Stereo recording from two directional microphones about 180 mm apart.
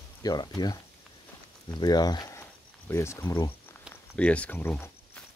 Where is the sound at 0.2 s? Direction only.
20° left (ahead or behind).